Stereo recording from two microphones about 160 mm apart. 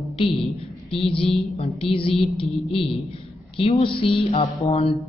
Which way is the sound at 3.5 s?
35° left (ahead or behind).